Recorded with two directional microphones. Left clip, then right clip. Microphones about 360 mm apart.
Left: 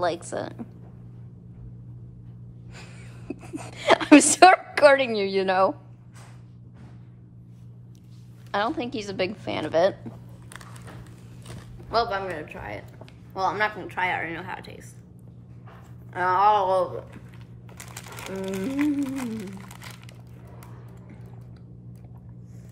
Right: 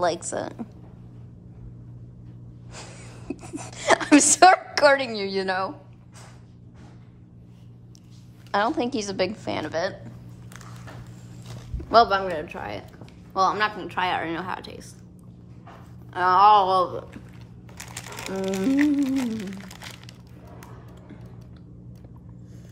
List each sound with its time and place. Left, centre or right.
0.0 s a woman's voice: centre
2.7 s a woman's voice: centre
8.5 s a woman's voice: centre
11.9 s a man's voice: centre
12.3 s a woman's voice: centre
16.1 s a woman's voice: centre
18.3 s a woman's voice: centre